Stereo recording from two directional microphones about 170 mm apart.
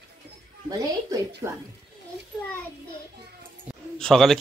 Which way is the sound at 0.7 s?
20° right (ahead or behind).